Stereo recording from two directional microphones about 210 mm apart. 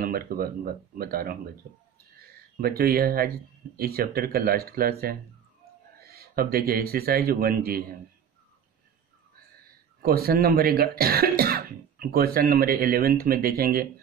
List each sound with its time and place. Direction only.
0.0 s speech: 45° right (ahead or behind)
2.1 s a sound: 45° right (ahead or behind)
3.7 s speech: 45° right (ahead or behind)
10.0 s speech: 45° right (ahead or behind)